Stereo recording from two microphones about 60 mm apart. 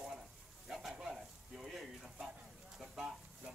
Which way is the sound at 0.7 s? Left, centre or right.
Centre.